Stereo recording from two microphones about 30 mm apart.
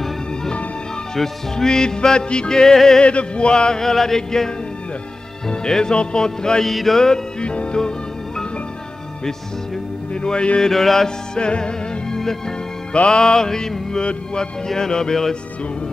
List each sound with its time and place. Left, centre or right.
1.1 s music: centre
3.0 s chant: left
3.8 s a sound: centre
5.7 s music: left
6.6 s music: centre
7.3 s music: left
10.2 s chant: left
10.7 s a sound: centre
11.3 s music: left
12.2 s music: centre
12.9 s chant: left
13.2 s music: left
14.7 s music: centre